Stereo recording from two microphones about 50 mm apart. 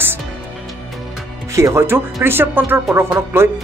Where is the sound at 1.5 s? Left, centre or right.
Right.